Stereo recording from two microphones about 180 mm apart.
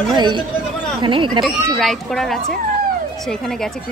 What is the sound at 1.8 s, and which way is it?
Speech, centre (ahead or behind).